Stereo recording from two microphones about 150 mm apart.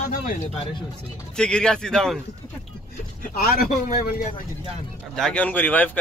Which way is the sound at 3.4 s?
85° left.